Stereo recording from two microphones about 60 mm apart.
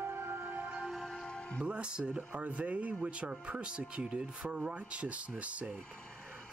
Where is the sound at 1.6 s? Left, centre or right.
Centre.